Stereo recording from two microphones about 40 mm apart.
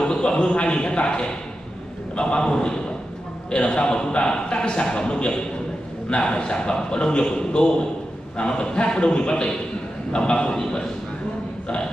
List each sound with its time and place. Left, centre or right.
0.0 s a man's voice: left